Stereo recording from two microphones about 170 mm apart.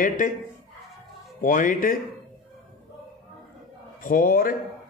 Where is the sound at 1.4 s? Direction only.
50° left (ahead or behind).